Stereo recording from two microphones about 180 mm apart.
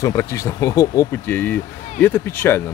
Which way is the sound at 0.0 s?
15° left (ahead or behind).